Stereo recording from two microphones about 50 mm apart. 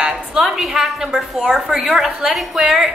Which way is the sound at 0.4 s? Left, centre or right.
Centre.